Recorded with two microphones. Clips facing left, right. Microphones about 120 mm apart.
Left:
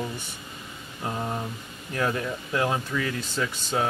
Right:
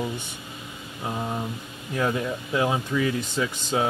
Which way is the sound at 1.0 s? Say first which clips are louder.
Right 1 dB; 5° right (ahead or behind).